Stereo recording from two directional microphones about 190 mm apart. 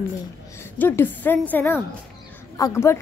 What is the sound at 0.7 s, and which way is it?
Speech, 10° left (ahead or behind).